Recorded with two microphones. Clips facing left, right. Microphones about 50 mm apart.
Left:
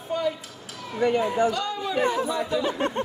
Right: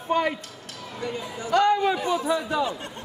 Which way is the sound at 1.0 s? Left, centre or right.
Left.